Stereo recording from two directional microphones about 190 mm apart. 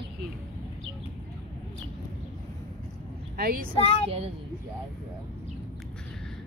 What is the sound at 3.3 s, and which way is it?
Speech, 50° right (ahead or behind).